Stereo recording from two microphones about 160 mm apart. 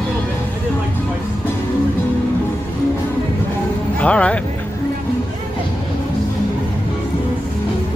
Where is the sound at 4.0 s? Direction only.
10° left (ahead or behind).